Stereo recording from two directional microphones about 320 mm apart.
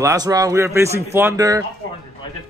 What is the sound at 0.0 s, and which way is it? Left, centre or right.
A man's voice, centre.